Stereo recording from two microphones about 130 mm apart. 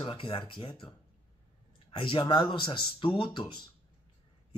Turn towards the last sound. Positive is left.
turn(degrees=35)  # may be behind; listen again after turning